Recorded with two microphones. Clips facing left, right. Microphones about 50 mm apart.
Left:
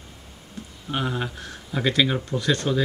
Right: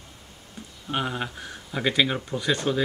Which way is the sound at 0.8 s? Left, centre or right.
Centre.